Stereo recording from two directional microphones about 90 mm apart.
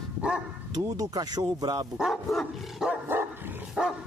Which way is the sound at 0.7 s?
40° right (ahead or behind).